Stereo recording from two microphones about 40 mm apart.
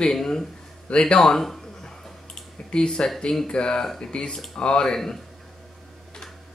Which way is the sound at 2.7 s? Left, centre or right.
Left.